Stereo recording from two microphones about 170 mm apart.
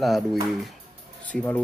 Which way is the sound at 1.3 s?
10° left (ahead or behind).